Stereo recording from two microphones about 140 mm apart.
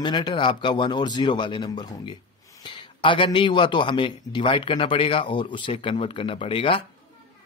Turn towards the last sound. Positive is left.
turn(degrees=40)  # may be behind; listen again after turning